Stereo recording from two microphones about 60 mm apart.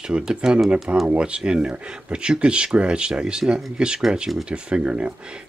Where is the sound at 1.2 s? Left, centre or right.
Centre.